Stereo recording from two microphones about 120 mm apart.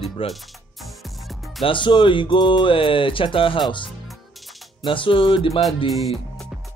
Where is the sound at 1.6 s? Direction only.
40° left (ahead or behind).